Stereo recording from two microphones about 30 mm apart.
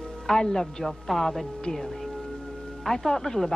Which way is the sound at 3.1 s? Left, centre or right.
Centre.